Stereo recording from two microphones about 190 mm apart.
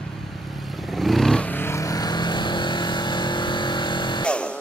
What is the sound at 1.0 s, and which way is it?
Vehicle, centre (ahead or behind).